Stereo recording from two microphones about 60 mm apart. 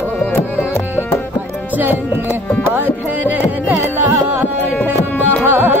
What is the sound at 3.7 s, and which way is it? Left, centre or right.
Music, right.